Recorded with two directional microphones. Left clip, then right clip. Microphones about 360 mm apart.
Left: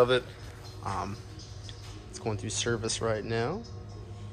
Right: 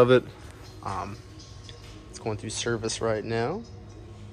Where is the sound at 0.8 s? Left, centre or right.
Centre.